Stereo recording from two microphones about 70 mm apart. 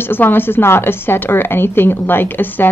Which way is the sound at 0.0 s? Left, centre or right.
Left.